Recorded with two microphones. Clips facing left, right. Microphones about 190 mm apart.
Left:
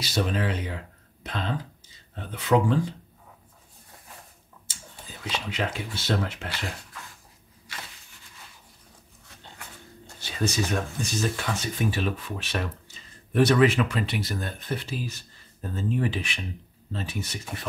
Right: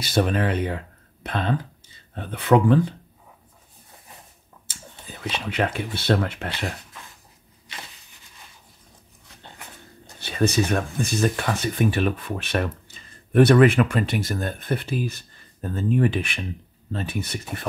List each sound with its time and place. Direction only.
0.0 s speech: 55° right (ahead or behind)
4.7 s whispering: 60° right (ahead or behind)
5.3 s speech: 60° right (ahead or behind)
7.7 s a sound: 20° right (ahead or behind)
10.2 s speech: 60° right (ahead or behind)